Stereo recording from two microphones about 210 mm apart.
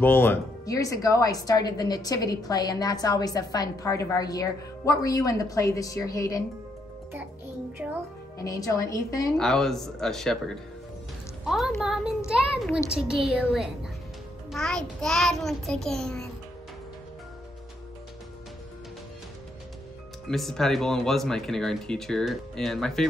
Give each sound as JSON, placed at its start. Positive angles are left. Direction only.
{"t": 0.0, "sound": "speech", "side_deg": 10}
{"t": 8.4, "sound": "speech", "side_deg": 15}
{"t": 9.4, "sound": "speech", "side_deg": 0}
{"t": 20.2, "sound": "speech", "side_deg": 0}